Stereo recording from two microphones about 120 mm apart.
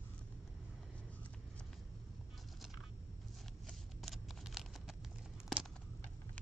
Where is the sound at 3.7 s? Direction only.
Centre (ahead or behind).